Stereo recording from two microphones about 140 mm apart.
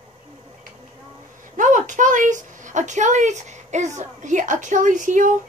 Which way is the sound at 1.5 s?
65° right (ahead or behind).